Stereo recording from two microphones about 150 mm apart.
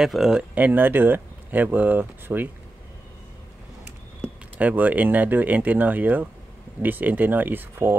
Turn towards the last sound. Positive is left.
turn(degrees=-15)  # may be behind; listen again after turning